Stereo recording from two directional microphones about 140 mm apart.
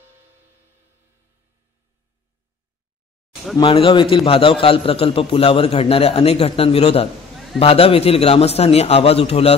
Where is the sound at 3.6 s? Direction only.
40° left (ahead or behind).